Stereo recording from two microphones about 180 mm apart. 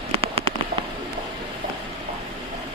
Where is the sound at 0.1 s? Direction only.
30° right (ahead or behind).